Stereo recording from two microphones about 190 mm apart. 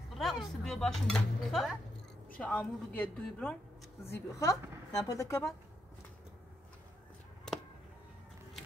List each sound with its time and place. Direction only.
0.2 s a woman's voice: centre (ahead or behind); by 5.5 s 15° left (ahead or behind)